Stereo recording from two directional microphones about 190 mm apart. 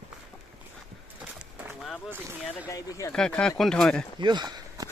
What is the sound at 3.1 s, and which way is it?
Speech, 5° left (ahead or behind).